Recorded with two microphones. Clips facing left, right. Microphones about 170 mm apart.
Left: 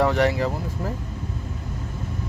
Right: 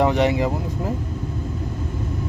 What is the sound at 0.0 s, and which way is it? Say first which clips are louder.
Speech: right 2 dB; 20° right (ahead or behind).